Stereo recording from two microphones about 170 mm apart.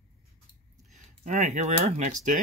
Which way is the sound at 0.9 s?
45° right (ahead or behind).